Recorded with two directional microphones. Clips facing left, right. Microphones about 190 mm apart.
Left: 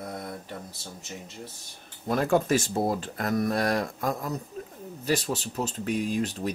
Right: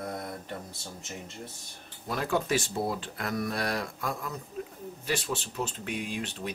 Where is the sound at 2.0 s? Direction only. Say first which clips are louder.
Left 6 dB; 45° left (ahead or behind).